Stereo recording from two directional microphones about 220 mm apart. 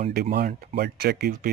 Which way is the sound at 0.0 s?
40° right (ahead or behind).